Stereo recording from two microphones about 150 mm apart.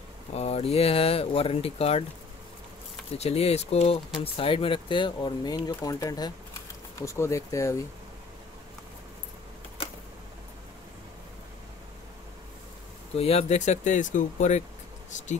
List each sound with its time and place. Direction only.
0.3 s speech: 45° left (ahead or behind)
3.2 s speech: 45° left (ahead or behind); by 7.8 s 20° left (ahead or behind)
13.1 s speech: 40° left (ahead or behind)